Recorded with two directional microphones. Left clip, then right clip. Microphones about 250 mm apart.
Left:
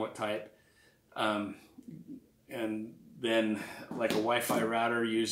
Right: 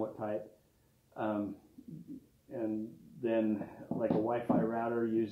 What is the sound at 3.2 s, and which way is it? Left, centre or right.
Speech, left.